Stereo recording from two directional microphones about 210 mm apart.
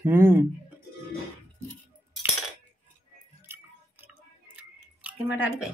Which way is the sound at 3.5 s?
10° right (ahead or behind).